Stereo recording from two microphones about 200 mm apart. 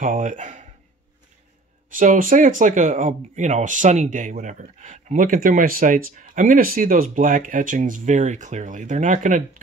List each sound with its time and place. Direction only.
0.0 s speech: 40° right (ahead or behind)
2.0 s speech: 40° right (ahead or behind)